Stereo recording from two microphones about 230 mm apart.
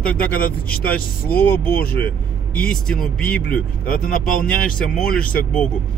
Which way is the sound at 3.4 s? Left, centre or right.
Left.